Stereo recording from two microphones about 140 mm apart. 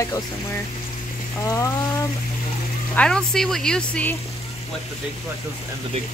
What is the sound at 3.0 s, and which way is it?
Speech, 5° left (ahead or behind).